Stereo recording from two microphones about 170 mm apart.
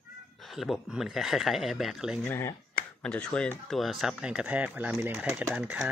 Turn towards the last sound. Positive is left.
turn(degrees=-10)  # may be behind; listen again after turning